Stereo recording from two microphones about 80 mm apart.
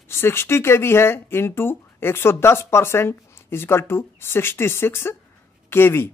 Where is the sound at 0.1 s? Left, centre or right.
Left.